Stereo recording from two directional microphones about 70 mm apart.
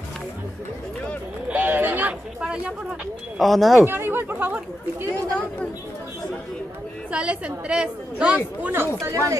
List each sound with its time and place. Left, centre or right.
1.5 s a sound: right
2.4 s a sound: centre
3.3 s speech: centre
3.8 s speech: right
7.1 s a woman's voice: centre
9.0 s speech: right